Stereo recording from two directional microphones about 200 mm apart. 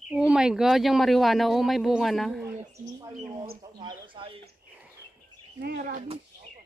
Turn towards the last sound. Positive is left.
turn(degrees=-45)  # may be behind; listen again after turning